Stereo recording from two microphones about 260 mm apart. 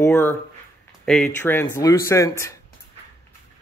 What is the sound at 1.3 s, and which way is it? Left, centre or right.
A man's voice, centre.